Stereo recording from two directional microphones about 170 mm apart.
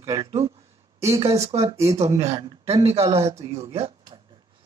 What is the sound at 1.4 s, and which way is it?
Speech, 35° right (ahead or behind).